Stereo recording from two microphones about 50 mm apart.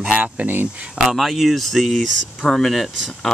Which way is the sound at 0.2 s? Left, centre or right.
Right.